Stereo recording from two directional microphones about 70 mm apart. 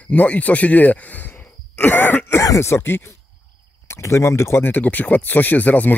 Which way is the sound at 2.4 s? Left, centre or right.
Left.